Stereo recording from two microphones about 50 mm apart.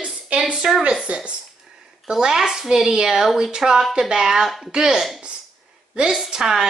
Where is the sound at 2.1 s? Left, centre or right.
Centre.